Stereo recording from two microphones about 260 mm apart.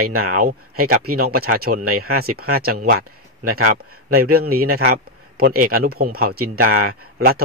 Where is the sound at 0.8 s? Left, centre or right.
Right.